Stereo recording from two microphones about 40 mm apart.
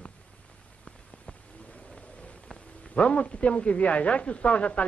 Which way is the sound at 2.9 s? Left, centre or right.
Left.